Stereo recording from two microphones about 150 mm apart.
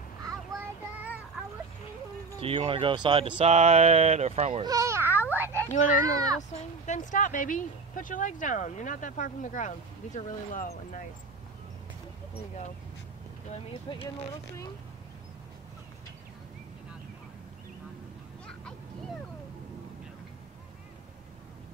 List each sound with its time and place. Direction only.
0.9 s child singing: 10° right (ahead or behind)
2.4 s speech: 40° right (ahead or behind)
3.3 s speech: 45° right (ahead or behind)
4.5 s speech: 35° right (ahead or behind)
4.7 s a child's voice: 20° right (ahead or behind)
5.3 s a sound: 15° right (ahead or behind)
5.7 s speech: 60° left (ahead or behind)
13.9 s speech: 35° left (ahead or behind)
18.5 s a sound: 5° left (ahead or behind)